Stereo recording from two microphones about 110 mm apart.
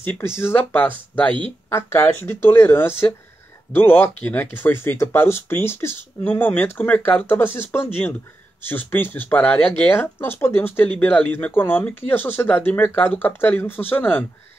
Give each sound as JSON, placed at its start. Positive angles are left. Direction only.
{"t": 0.0, "sound": "speech", "side_deg": 15}